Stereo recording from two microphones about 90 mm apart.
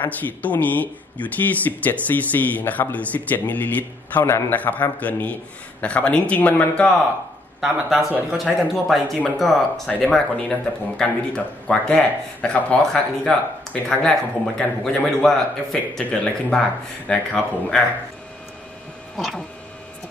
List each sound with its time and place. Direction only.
0.0 s speech: 20° left (ahead or behind)
7.6 s a man's voice: 5° right (ahead or behind); by 17.8 s 10° left (ahead or behind)
19.1 s speech: centre (ahead or behind)